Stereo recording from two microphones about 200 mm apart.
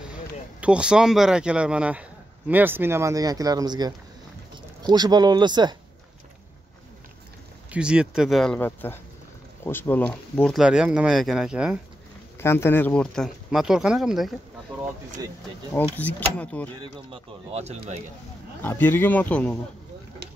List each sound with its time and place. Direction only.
0.1 s speech: 5° right (ahead or behind); by 5.8 s 20° right (ahead or behind)
7.7 s speech: 5° right (ahead or behind)
12.4 s speech: 10° left (ahead or behind)
15.7 s speech: 10° left (ahead or behind)
16.7 s speech: 25° right (ahead or behind)
18.6 s speech: 10° left (ahead or behind)
20.2 s stir: 55° right (ahead or behind)